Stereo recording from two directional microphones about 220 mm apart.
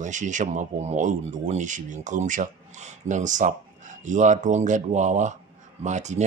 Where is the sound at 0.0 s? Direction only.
35° right (ahead or behind).